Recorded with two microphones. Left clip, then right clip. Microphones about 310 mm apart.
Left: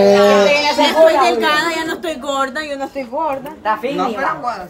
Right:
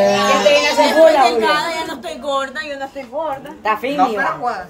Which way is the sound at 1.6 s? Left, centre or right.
Centre.